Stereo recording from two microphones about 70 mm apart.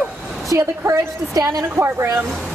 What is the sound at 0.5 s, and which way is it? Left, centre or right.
A woman's voice, right.